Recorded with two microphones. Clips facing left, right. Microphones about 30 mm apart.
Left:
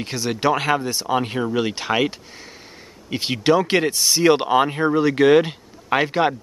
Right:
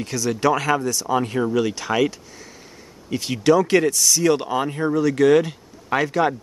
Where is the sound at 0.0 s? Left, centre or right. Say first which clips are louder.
Right 1 dB; left.